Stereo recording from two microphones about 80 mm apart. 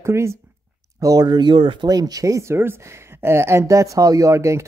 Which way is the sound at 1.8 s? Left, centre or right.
Right.